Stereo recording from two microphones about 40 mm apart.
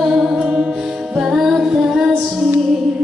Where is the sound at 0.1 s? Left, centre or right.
Centre.